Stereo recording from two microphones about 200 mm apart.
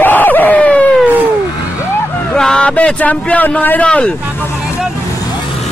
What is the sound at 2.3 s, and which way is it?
Speech, 5° left (ahead or behind).